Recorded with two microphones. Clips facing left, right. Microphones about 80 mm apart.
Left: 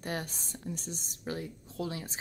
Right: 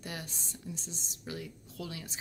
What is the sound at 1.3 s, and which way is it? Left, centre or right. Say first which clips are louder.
Speech: left 4 dB; left.